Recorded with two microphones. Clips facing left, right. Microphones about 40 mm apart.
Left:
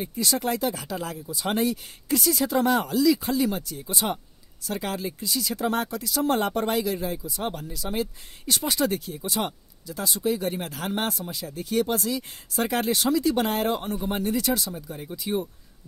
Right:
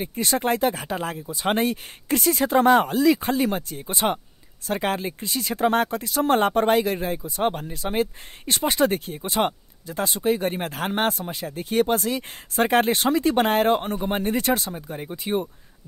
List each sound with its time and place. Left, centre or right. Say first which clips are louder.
0.0 s speech: right 3 dB; right